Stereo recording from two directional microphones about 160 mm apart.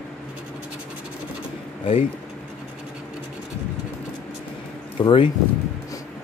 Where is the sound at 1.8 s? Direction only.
35° left (ahead or behind).